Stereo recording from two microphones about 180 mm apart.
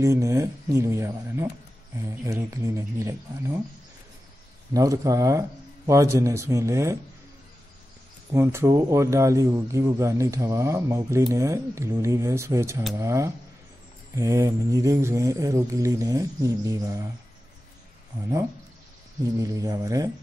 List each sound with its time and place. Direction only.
0.0 s a man's voice: 15° right (ahead or behind)
4.7 s a man's voice: 20° right (ahead or behind)
8.3 s a man's voice: 15° right (ahead or behind)
19.3 s speech: 20° right (ahead or behind)